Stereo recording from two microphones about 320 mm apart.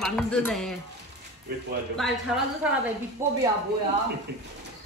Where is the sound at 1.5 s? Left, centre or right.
Right.